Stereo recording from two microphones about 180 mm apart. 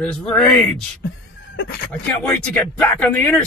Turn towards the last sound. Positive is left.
turn(degrees=10)  # may be behind; listen again after turning